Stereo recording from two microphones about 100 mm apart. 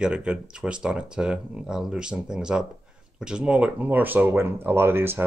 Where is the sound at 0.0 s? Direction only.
10° right (ahead or behind).